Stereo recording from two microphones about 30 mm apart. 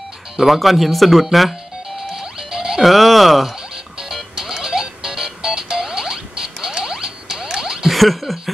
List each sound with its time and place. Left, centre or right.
0.5 s speech: centre
2.3 s music: centre
2.8 s speech: centre
4.0 s music: centre
7.4 s a sound: centre
7.9 s snicker: centre